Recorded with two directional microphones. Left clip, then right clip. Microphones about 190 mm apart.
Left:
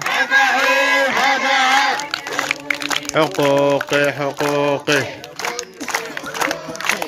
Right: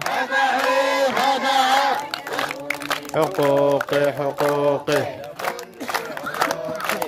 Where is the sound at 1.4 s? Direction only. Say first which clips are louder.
Left 2 dB; 15° right (ahead or behind).